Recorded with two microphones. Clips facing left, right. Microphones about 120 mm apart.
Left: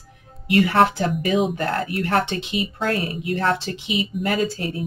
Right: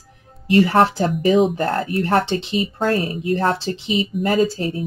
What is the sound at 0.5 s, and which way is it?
Speech, 35° right (ahead or behind).